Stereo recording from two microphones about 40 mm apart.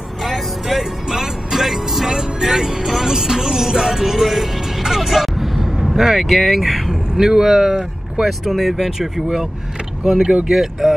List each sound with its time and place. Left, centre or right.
0.2 s music: centre
6.9 s speech: centre
10.8 s speech: centre